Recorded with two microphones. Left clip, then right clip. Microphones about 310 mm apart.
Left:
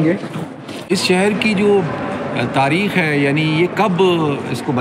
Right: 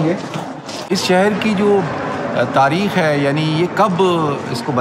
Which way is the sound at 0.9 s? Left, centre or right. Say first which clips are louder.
Right 1 dB; centre.